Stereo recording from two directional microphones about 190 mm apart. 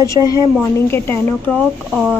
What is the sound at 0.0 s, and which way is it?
Speech, 20° left (ahead or behind).